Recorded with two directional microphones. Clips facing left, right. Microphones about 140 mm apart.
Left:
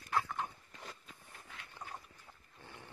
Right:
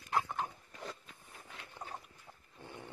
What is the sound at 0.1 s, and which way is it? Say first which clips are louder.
Dog: right 1 dB; 20° right (ahead or behind).